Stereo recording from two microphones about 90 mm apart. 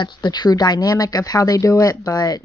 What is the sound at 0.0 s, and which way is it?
Speech, 55° left (ahead or behind).